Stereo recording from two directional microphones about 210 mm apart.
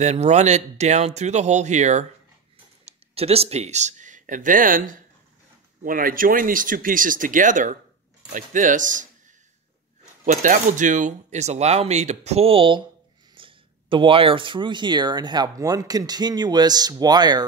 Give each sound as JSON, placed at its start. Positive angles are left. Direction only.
{"t": 0.0, "sound": "speech", "side_deg": -35}
{"t": 10.2, "sound": "speech", "side_deg": -35}